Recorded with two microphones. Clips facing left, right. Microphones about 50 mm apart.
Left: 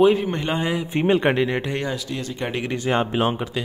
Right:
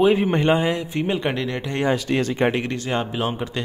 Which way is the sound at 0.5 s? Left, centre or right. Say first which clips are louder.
Right 2 dB; centre.